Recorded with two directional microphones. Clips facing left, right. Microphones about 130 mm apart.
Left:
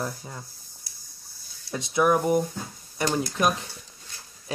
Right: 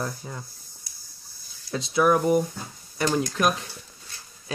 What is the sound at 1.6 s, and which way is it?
Speech, 20° left (ahead or behind).